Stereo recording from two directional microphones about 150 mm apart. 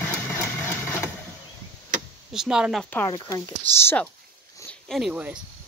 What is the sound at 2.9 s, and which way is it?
Speech, 15° left (ahead or behind).